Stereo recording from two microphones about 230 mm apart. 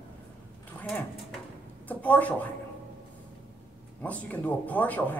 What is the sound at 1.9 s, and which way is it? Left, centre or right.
Speech, centre.